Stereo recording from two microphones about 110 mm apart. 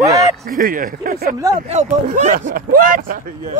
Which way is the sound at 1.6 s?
90° right.